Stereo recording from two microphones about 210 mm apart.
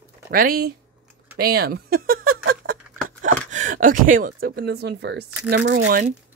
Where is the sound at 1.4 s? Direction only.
45° right (ahead or behind).